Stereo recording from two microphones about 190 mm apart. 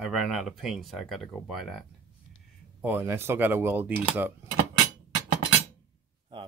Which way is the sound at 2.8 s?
10° right (ahead or behind).